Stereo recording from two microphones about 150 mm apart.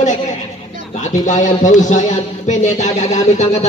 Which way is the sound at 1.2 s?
55° left (ahead or behind).